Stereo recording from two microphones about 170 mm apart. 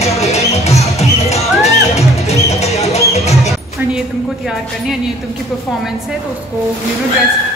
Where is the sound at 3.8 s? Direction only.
10° right (ahead or behind).